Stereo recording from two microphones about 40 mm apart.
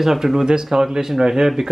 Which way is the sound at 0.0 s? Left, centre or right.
Centre.